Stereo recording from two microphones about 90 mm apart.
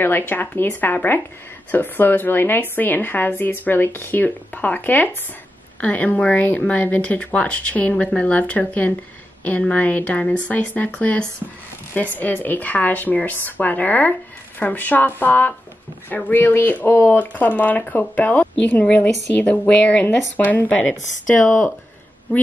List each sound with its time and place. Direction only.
0.3 s speech: 20° left (ahead or behind)